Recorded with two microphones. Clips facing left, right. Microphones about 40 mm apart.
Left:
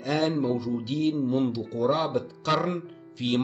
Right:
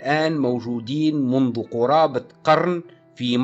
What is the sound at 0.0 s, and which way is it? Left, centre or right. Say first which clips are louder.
Speech: right 6 dB; right.